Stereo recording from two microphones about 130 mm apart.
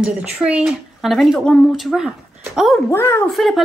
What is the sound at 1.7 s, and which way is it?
A woman's voice, 5° right (ahead or behind).